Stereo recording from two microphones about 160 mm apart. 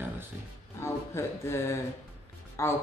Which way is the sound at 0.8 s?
15° left (ahead or behind).